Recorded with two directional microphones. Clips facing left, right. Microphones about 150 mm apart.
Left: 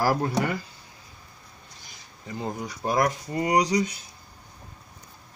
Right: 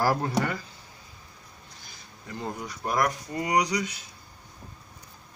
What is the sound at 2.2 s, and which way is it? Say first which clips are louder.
Speech: left 3 dB; 20° left (ahead or behind).